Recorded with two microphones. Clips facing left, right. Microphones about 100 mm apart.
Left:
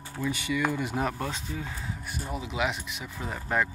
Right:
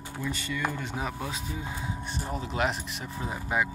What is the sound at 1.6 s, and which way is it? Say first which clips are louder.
Speech: right 1 dB; 15° right (ahead or behind).